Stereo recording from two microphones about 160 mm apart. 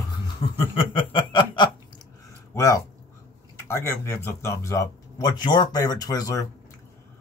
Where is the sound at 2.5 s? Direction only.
20° left (ahead or behind).